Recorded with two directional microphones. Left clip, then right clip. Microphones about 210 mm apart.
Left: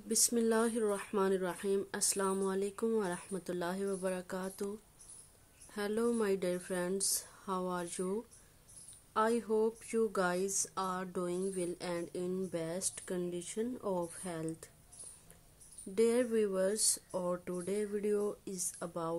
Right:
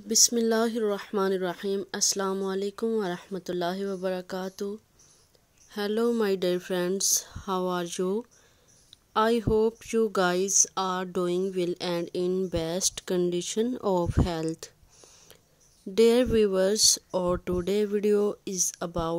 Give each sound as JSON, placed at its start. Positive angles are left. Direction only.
{"t": 0.1, "sound": "speech", "side_deg": -30}
{"t": 15.9, "sound": "speech", "side_deg": -40}